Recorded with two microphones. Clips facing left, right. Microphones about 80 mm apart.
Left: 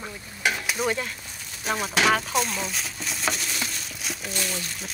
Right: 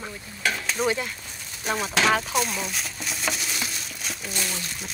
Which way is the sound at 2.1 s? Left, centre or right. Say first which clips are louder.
Even; centre.